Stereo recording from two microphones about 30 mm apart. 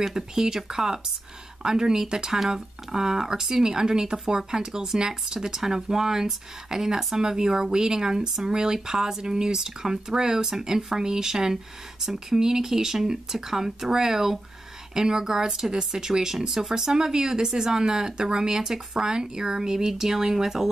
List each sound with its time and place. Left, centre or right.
0.0 s speech: centre
2.3 s speech: centre